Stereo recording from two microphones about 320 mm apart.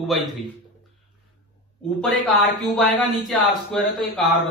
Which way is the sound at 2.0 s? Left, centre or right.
Centre.